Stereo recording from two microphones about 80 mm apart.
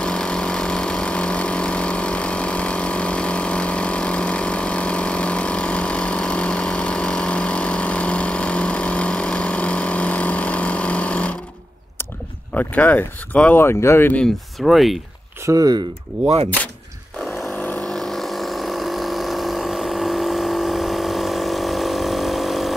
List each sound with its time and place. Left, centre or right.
0.0 s vehicle: centre
12.5 s speech: left
14.6 s speech: centre
15.4 s speech: right
17.2 s a sound: centre
17.6 s vehicle: centre
17.8 s a sound: centre